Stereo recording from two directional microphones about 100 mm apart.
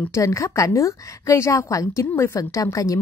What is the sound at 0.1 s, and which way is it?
A woman's voice, 30° left (ahead or behind).